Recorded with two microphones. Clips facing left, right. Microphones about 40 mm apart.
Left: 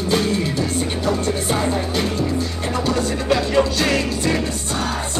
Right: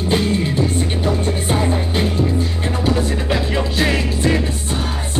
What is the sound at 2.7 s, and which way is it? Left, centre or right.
Music, right.